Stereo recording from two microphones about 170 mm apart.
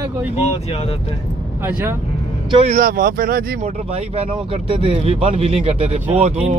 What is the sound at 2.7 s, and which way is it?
Speech, 55° right (ahead or behind).